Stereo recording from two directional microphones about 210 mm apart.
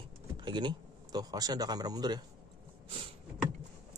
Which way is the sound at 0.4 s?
20° right (ahead or behind).